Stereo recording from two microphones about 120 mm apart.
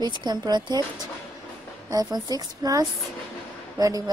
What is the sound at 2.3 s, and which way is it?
Speech, 30° right (ahead or behind).